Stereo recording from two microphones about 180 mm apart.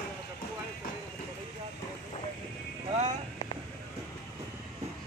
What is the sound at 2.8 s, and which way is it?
Vehicle, 35° right (ahead or behind).